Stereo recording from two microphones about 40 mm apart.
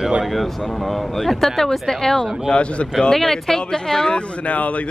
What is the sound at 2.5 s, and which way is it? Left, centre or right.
Speech, left.